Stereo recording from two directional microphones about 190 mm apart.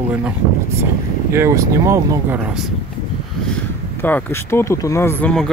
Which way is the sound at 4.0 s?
10° left (ahead or behind).